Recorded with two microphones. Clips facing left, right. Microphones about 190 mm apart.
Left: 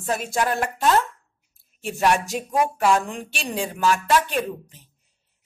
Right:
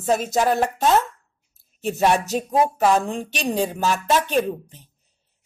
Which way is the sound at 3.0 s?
35° right (ahead or behind).